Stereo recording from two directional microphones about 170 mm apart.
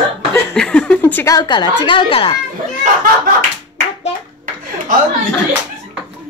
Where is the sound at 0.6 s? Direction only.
5° left (ahead or behind).